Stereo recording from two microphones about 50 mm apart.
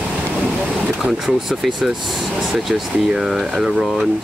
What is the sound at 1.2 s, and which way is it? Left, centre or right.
Speech, centre.